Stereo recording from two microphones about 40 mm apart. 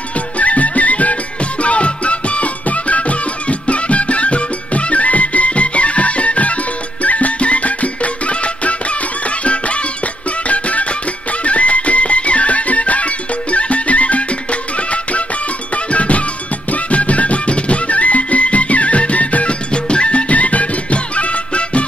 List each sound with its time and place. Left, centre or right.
0.4 s music: left
19.7 s music: left